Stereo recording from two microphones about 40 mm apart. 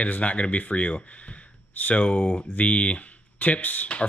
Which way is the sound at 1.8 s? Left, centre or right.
Left.